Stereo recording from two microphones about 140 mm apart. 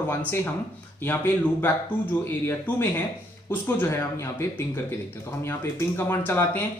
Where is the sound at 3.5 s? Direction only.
15° left (ahead or behind).